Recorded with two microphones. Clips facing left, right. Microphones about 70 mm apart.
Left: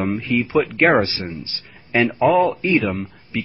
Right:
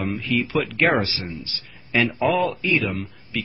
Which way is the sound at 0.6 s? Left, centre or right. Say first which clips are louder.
Left 6 dB; left.